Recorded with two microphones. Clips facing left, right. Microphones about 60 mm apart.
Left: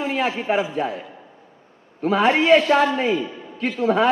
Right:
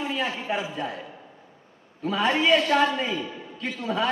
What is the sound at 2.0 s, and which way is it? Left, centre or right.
A man's voice, left.